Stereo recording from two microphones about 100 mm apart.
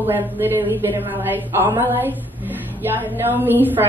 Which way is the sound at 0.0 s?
20° right (ahead or behind).